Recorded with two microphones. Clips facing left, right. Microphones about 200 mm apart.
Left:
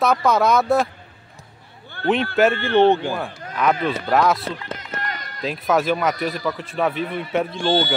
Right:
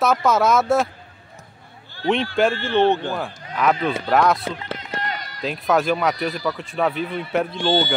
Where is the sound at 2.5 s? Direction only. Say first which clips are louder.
Left 2 dB; 60° left (ahead or behind).